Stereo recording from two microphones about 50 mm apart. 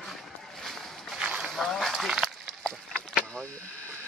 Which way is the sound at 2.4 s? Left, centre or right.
Centre.